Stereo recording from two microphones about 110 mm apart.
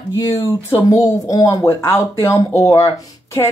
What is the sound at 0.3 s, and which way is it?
Speech, 25° left (ahead or behind).